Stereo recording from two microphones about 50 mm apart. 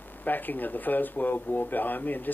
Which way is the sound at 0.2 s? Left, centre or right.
Left.